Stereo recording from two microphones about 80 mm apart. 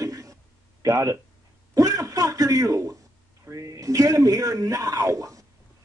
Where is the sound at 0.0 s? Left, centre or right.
Right.